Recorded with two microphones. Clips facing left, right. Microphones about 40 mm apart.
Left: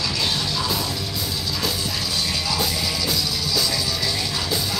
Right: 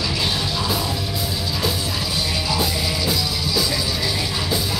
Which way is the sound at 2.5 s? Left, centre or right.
Centre.